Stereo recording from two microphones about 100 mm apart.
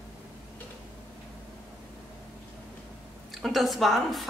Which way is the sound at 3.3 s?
Centre (ahead or behind).